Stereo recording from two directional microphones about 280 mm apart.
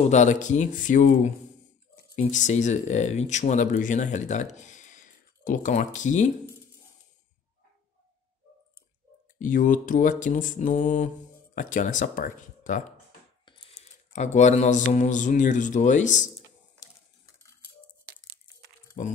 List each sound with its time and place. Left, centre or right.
0.1 s speech: left
9.4 s speech: left